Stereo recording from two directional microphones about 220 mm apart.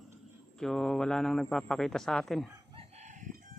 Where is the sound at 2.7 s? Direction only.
35° right (ahead or behind).